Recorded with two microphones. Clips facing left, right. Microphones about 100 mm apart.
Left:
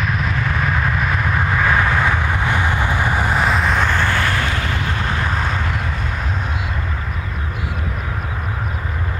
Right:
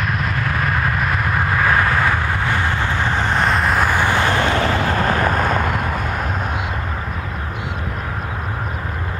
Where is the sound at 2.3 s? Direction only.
15° left (ahead or behind); by 4.7 s 25° right (ahead or behind).